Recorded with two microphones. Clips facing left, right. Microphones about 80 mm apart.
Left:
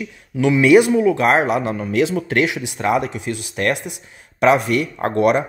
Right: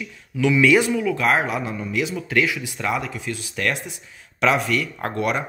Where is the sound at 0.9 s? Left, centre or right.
Left.